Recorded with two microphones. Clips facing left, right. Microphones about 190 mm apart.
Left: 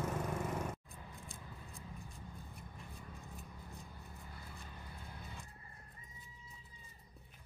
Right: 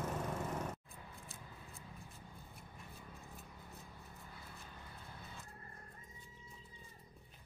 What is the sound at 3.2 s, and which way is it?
Scissors, centre (ahead or behind).